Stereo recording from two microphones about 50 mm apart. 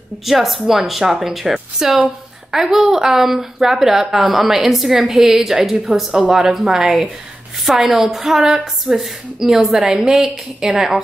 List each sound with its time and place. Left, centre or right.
0.2 s a woman's voice: centre
9.9 s a woman's voice: right
10.2 s a woman's voice: centre